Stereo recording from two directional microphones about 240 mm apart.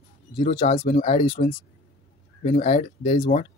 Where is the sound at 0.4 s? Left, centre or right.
Left.